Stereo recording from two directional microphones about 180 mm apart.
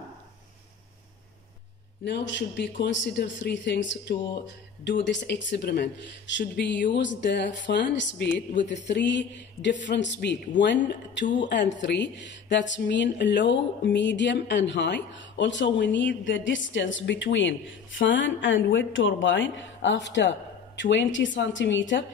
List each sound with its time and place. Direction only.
2.0 s speech: 70° left (ahead or behind)